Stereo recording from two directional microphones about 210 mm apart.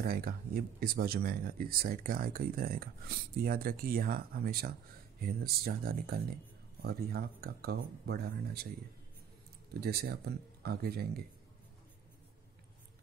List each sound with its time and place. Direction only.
0.0 s speech: 45° right (ahead or behind)
9.8 s speech: 50° right (ahead or behind)